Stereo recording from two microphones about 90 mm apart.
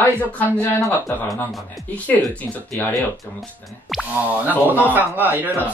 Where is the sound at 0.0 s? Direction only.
20° left (ahead or behind).